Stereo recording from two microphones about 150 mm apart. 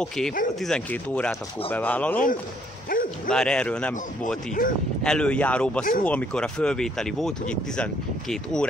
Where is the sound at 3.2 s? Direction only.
5° left (ahead or behind).